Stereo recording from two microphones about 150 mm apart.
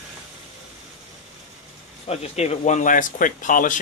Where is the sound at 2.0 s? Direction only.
45° left (ahead or behind).